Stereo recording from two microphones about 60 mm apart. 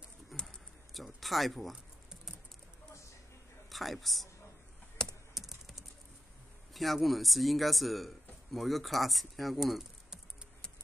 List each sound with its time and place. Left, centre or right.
0.3 s a sound: centre
0.9 s typing: centre
3.7 s a man's voice: centre
5.0 s computer keyboard: centre
5.3 s typing: centre
6.7 s speech: centre